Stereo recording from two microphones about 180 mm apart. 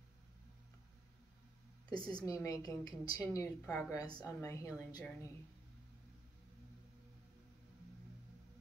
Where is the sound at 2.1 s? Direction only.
20° left (ahead or behind).